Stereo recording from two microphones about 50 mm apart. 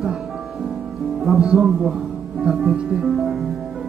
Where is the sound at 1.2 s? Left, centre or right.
Centre.